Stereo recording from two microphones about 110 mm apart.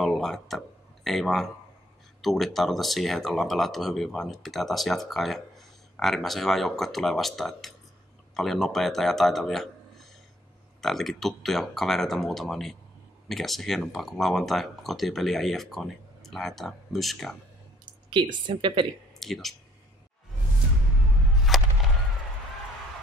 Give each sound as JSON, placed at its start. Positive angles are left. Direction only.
{"t": 0.0, "sound": "speech", "side_deg": 0}
{"t": 18.1, "sound": "speech", "side_deg": -45}
{"t": 19.1, "sound": "speech", "side_deg": 0}
{"t": 21.5, "sound": "a sound", "side_deg": 0}